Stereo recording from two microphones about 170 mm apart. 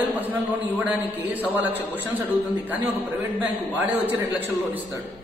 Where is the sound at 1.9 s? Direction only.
10° right (ahead or behind).